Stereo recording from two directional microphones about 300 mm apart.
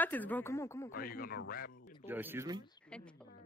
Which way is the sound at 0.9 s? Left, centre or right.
Left.